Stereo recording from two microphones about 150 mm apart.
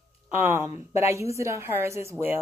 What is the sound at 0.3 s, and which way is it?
A woman's voice, 15° right (ahead or behind).